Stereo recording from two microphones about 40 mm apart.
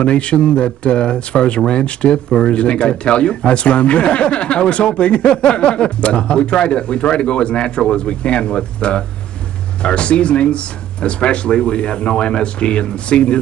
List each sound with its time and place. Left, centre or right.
0.0 s speech: left